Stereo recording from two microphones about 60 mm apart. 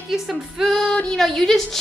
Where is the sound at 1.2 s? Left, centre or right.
Centre.